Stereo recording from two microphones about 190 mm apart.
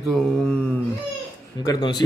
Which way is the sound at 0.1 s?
5° left (ahead or behind).